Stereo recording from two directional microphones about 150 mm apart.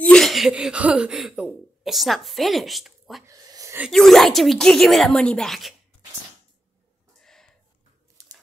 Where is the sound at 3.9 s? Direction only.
Centre (ahead or behind).